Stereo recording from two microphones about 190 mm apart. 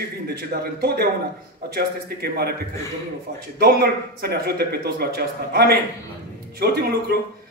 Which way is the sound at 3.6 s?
55° right (ahead or behind).